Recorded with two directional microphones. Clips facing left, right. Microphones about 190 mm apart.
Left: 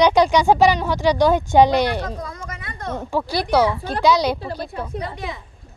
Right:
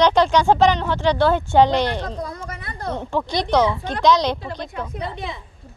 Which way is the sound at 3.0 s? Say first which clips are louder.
Left 1 dB; 5° left (ahead or behind).